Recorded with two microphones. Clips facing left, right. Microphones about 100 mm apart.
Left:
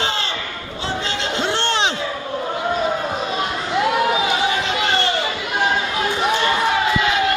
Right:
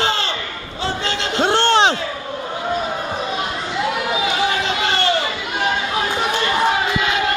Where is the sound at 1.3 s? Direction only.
40° right (ahead or behind).